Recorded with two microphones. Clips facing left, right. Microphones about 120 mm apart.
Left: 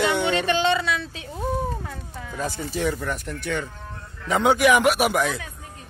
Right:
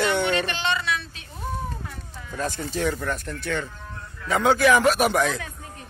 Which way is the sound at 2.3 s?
10° left (ahead or behind).